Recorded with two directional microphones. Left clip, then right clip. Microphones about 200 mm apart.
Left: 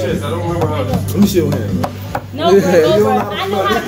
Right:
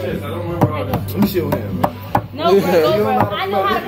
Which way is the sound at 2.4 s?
5° left (ahead or behind).